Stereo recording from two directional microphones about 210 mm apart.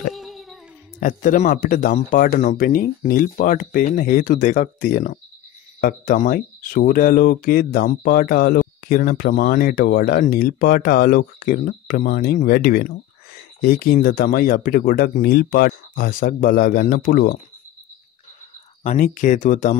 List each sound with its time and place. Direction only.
0.1 s a sound: centre (ahead or behind)
0.9 s speech: 40° left (ahead or behind)
18.8 s speech: 35° left (ahead or behind)